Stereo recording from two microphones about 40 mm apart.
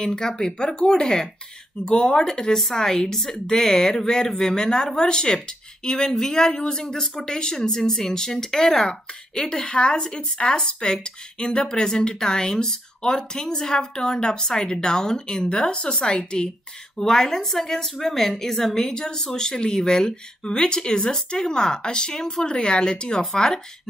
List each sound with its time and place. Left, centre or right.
0.0 s a woman's voice: centre